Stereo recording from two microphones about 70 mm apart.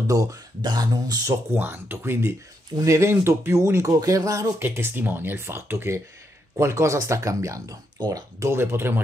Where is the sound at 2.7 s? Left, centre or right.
Right.